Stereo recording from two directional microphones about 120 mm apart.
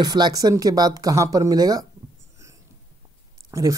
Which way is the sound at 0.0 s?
35° right (ahead or behind).